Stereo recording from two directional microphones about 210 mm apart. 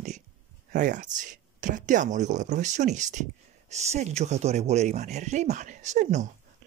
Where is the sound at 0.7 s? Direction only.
35° right (ahead or behind).